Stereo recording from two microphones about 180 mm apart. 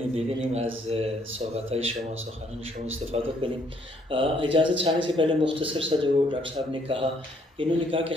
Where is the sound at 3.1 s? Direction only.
35° right (ahead or behind).